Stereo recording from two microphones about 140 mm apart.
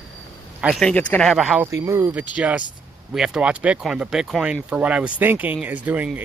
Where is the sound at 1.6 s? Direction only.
20° right (ahead or behind).